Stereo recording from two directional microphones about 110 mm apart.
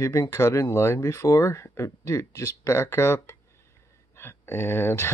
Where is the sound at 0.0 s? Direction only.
30° left (ahead or behind).